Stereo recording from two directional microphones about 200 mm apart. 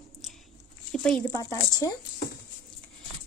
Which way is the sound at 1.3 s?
15° left (ahead or behind).